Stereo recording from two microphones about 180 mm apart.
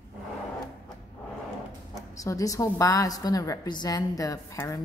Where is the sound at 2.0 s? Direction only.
20° left (ahead or behind).